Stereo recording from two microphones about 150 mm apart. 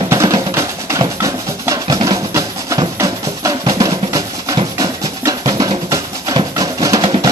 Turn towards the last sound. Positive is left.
turn(degrees=-25)  # may be behind; listen again after turning